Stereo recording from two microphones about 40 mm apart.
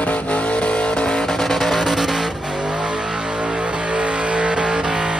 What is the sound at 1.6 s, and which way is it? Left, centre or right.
Music, centre.